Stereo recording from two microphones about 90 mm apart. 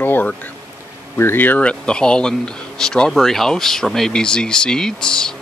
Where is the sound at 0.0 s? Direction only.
20° left (ahead or behind).